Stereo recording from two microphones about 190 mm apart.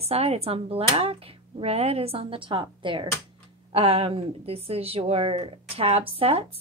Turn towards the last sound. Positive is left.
turn(degrees=-30)  # may be behind; listen again after turning